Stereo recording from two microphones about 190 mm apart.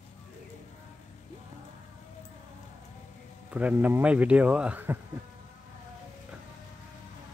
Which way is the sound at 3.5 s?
10° right (ahead or behind).